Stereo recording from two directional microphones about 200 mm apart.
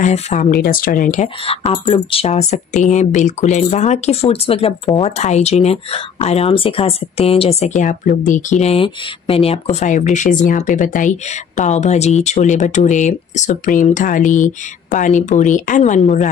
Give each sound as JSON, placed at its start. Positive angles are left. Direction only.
{"t": 0.0, "sound": "speech", "side_deg": 40}